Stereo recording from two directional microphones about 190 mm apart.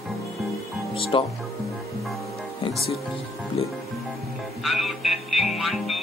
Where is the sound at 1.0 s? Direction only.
30° left (ahead or behind).